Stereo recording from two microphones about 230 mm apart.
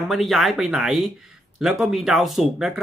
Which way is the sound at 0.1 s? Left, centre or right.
Centre.